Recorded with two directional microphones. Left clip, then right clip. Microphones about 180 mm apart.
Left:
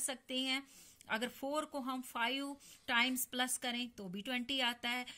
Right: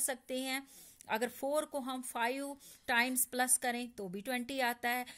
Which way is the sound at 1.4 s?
35° right (ahead or behind).